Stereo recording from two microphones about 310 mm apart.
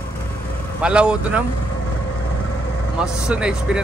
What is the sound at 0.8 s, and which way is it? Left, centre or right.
Speech, centre.